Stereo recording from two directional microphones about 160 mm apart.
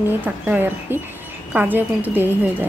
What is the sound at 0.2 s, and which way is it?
Speech, 10° right (ahead or behind).